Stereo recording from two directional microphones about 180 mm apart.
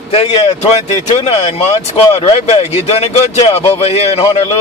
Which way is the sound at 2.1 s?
35° left (ahead or behind).